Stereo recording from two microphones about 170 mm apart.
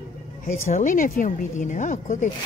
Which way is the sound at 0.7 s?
45° left (ahead or behind).